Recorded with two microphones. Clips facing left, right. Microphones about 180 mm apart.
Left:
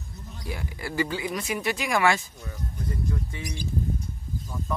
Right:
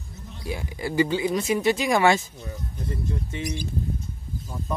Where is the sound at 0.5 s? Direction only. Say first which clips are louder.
Right 4 dB; 20° right (ahead or behind).